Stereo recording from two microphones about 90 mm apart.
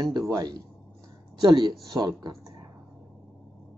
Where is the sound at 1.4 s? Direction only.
60° right (ahead or behind).